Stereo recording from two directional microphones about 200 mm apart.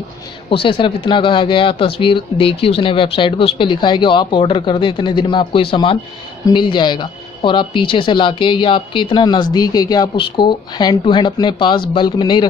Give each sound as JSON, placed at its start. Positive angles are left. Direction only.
{"t": 0.5, "sound": "speech", "side_deg": 25}